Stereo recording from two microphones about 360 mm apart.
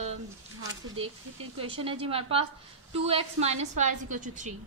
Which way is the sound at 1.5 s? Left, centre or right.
Centre.